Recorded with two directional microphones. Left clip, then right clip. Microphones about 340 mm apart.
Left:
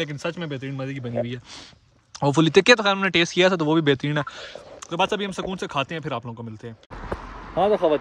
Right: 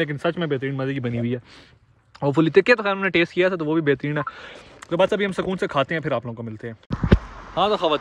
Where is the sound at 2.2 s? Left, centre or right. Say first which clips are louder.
Even; centre.